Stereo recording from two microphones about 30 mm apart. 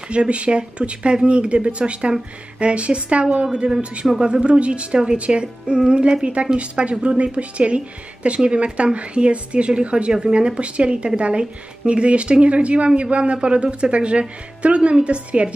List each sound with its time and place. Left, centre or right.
0.1 s a woman's voice: right
10.1 s a woman's voice: right